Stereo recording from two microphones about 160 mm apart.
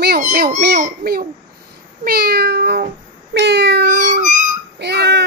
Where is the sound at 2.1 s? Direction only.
90° right.